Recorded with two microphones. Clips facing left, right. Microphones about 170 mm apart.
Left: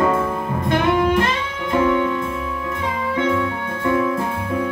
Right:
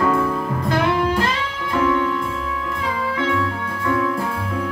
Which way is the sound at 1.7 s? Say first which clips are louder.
Left 2 dB; 25° left (ahead or behind).